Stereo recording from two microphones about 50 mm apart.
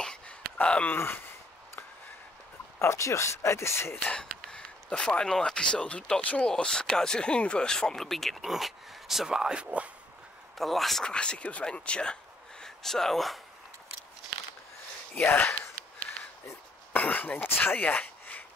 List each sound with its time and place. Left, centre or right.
0.6 s a sound: left
0.9 s speech: left
2.8 s speech: left
4.1 s a sound: centre
5.4 s speech: centre; by 9.8 s right
10.6 s speech: centre
11.1 s speech: centre
15.1 s speech: left
16.9 s speech: left
17.7 s a sound: left